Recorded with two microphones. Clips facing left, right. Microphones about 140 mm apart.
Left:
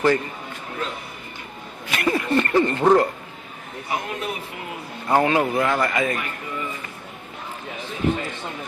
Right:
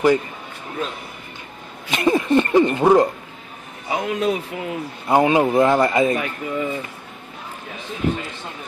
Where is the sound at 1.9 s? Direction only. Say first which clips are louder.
Right 4 dB; 20° right (ahead or behind).